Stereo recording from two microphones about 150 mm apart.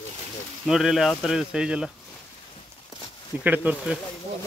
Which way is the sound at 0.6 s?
Centre (ahead or behind).